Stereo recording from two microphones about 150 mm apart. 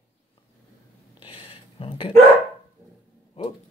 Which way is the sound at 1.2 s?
40° left (ahead or behind).